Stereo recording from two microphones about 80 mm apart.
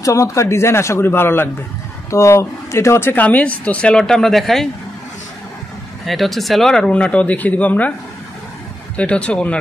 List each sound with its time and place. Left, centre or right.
0.0 s speech: left
2.0 s speech: left
3.2 s speech: centre
6.0 s speech: centre
8.9 s speech: centre